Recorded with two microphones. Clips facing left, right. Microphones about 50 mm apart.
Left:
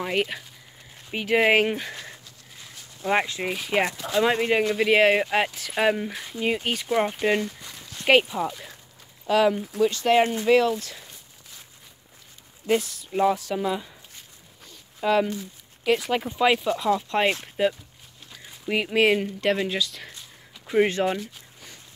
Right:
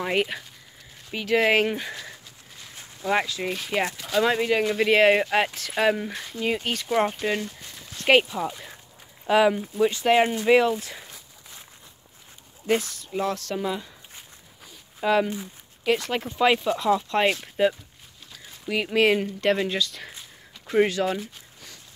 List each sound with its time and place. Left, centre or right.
0.0 s speech: centre
1.1 s speech: centre
3.0 s speech: centre
4.6 s speech: centre
8.5 s speech: centre
12.6 s speech: centre
13.2 s speech: centre
14.6 s dog: centre
15.8 s speech: centre
18.3 s speech: centre
20.7 s speech: centre